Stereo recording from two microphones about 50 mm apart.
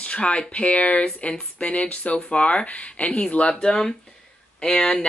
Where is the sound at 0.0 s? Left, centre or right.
Left.